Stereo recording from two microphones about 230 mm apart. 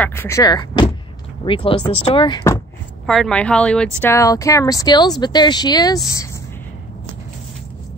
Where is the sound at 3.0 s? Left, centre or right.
Centre.